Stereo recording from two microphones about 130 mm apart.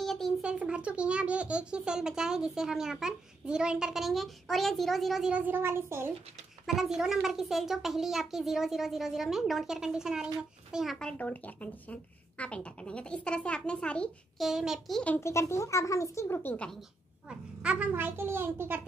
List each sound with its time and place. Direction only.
0.0 s a child's voice: centre (ahead or behind); by 6.1 s 20° right (ahead or behind)
6.6 s a child's voice: centre (ahead or behind)
14.5 s a child's voice: 5° right (ahead or behind)
15.1 s speech: 20° left (ahead or behind)
17.6 s a child's voice: 10° right (ahead or behind)